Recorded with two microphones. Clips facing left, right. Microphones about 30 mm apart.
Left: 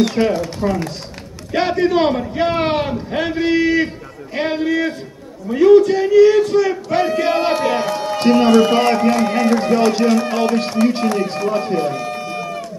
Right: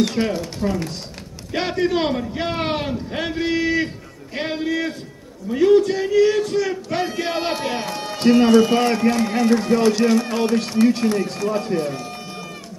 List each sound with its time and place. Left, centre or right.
0.0 s a man's voice: centre
9.6 s a man's voice: left
9.9 s a man's voice: centre
11.9 s run: left